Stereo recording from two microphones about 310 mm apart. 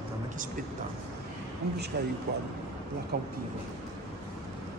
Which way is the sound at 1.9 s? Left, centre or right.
Right.